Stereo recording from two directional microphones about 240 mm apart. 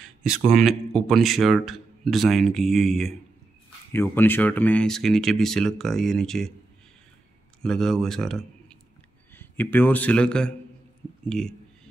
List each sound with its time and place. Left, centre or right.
0.5 s speech: centre
7.6 s speech: centre
11.2 s a sound: centre